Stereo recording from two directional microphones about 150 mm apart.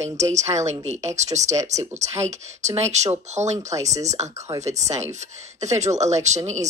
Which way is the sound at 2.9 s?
50° right (ahead or behind).